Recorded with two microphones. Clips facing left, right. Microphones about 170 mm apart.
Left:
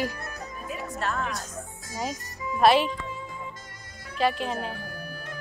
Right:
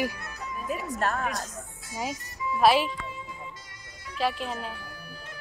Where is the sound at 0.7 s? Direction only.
45° right (ahead or behind).